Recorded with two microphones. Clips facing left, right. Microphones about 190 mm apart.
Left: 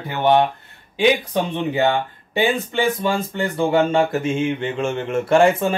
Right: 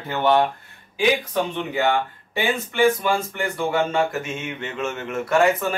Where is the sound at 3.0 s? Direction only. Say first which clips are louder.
Left 2 dB; 30° left (ahead or behind).